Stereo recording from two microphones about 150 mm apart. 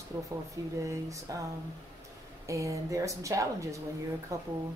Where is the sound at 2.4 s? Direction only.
20° right (ahead or behind).